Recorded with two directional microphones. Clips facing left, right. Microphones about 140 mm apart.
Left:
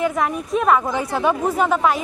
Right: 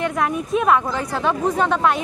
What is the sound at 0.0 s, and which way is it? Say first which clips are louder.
Speech: left 1 dB; centre (ahead or behind).